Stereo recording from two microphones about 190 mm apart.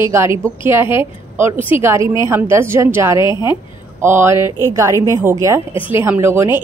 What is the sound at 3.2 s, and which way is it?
Speech, 25° left (ahead or behind).